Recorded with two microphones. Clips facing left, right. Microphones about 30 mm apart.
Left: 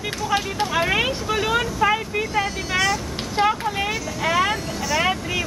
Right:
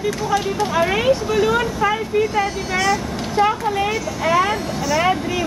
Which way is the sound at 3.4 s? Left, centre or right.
Left.